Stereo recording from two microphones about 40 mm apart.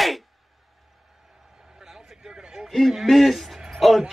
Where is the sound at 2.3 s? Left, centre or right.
Centre.